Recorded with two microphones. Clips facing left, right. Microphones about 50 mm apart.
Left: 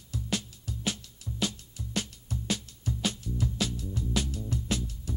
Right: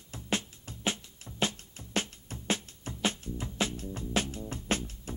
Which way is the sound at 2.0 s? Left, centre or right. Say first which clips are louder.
Right 1 dB; right.